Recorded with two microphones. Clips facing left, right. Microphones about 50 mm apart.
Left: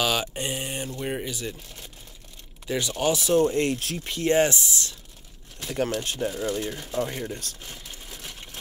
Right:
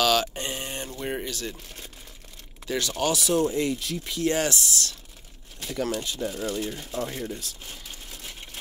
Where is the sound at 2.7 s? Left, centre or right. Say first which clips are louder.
Left 1 dB; centre.